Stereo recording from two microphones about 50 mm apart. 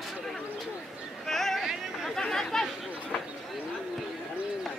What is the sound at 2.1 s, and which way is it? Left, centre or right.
Chatter, centre.